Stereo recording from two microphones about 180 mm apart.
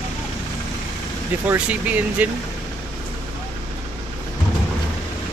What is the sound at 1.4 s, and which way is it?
Speech, 10° right (ahead or behind).